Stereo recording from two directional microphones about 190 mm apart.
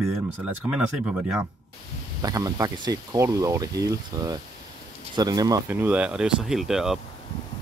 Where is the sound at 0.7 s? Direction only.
5° right (ahead or behind).